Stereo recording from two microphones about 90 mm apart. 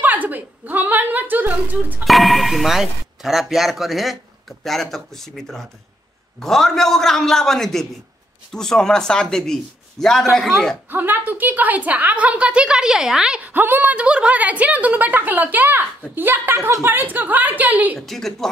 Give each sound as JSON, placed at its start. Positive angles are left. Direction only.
{"t": 0.0, "sound": "a woman's voice", "side_deg": -20}
{"t": 2.0, "sound": "speech", "side_deg": 0}
{"t": 10.9, "sound": "a woman's voice", "side_deg": -20}
{"t": 13.4, "sound": "a woman's voice", "side_deg": -20}
{"t": 17.9, "sound": "speech", "side_deg": 5}